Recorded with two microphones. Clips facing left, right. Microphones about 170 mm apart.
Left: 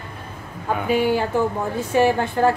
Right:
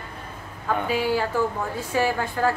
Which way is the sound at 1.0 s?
20° left (ahead or behind).